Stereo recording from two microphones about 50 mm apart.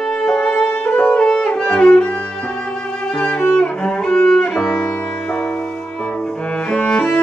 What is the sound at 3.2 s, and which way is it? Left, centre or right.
Music, left.